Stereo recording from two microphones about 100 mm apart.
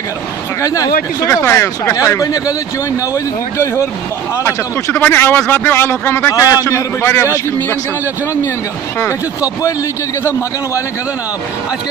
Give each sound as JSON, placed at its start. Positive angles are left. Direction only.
{"t": 0.6, "sound": "a man's voice", "side_deg": 35}
{"t": 2.0, "sound": "a man's voice", "side_deg": 35}
{"t": 4.4, "sound": "a man's voice", "side_deg": 25}
{"t": 6.3, "sound": "a man's voice", "side_deg": 35}